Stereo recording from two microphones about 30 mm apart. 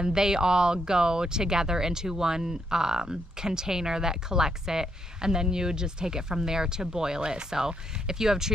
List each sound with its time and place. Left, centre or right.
0.0 s speech: right
7.5 s speech: centre